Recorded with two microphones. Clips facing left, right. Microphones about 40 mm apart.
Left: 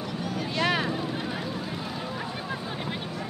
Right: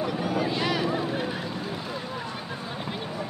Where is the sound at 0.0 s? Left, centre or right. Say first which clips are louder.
Right 5 dB; centre.